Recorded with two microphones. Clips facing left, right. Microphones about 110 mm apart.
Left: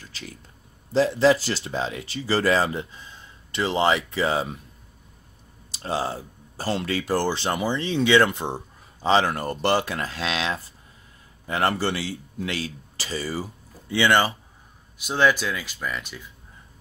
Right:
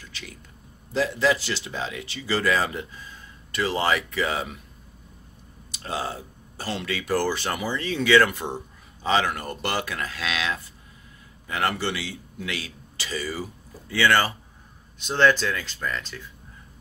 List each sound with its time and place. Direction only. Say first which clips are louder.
0.0 s a sound: left 2 dB; 35° left (ahead or behind)
0.9 s speech: left 4 dB; 35° left (ahead or behind)
5.7 s speech: left 3 dB; 30° left (ahead or behind)
15.0 s speech: right 1 dB; 10° left (ahead or behind)